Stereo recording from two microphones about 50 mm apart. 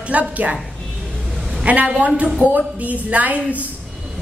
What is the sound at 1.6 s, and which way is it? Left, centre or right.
A woman's voice, right.